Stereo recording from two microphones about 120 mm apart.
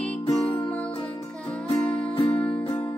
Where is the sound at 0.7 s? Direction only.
10° left (ahead or behind).